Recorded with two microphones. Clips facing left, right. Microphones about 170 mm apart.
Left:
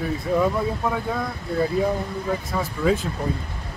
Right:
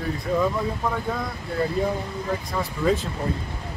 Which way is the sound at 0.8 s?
5° left (ahead or behind).